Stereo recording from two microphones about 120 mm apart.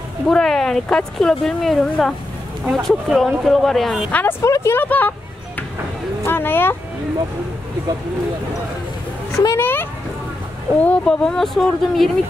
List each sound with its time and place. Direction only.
0.3 s speech: 5° left (ahead or behind)
4.1 s speech: 15° left (ahead or behind)
6.2 s speech: 15° left (ahead or behind)
9.3 s speech: 25° left (ahead or behind); by 12.1 s centre (ahead or behind)